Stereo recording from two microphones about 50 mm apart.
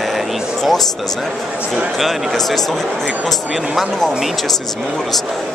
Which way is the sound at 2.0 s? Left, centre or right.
Centre.